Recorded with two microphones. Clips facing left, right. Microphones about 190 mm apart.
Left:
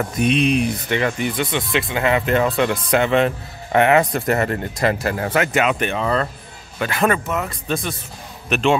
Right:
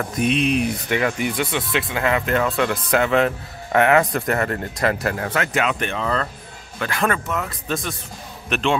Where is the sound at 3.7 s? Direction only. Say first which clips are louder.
Left 1 dB; 15° left (ahead or behind).